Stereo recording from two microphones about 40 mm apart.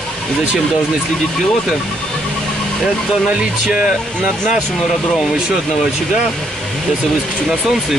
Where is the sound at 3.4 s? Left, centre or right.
Right.